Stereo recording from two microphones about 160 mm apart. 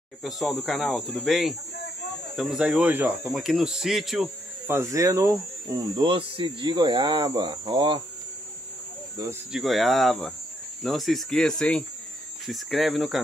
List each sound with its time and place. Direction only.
0.2 s speech: centre (ahead or behind)
4.6 s speech: 20° right (ahead or behind)
5.9 s speech: 35° right (ahead or behind)
9.5 s speech: centre (ahead or behind)